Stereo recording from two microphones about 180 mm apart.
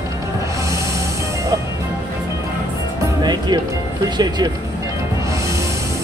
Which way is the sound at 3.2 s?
25° right (ahead or behind).